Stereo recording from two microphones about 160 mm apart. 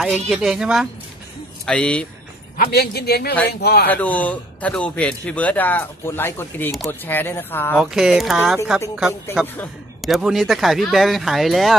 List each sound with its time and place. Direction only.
0.3 s speech: centre (ahead or behind)
2.5 s a man's voice: 75° left (ahead or behind)
3.8 s speech: 10° left (ahead or behind)
7.8 s speech: 5° right (ahead or behind)